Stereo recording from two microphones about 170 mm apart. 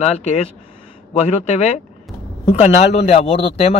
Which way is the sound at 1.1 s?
35° left (ahead or behind).